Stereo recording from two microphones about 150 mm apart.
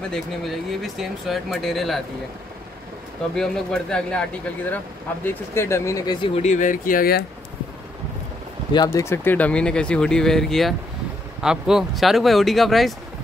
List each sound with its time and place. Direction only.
0.1 s speech: centre (ahead or behind)
3.3 s speech: 5° left (ahead or behind); by 6.1 s 20° left (ahead or behind)
6.2 s speech: 45° left (ahead or behind); by 7.2 s 80° left
8.7 s speech: 20° left (ahead or behind); by 12.9 s centre (ahead or behind)